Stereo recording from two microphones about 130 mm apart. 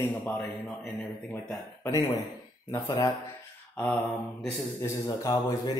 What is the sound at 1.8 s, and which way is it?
Speech, 20° left (ahead or behind).